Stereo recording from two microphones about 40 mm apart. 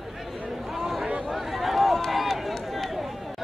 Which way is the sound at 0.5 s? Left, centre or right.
Centre.